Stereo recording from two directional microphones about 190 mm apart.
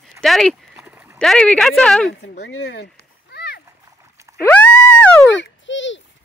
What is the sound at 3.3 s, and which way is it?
Splash, 60° left (ahead or behind).